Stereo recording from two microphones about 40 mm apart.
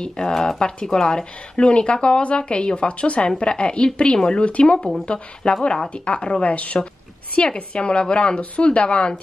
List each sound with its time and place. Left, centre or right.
0.3 s a woman's voice: centre
0.6 s a woman's voice: left